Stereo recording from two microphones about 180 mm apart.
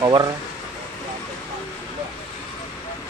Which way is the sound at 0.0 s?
20° right (ahead or behind).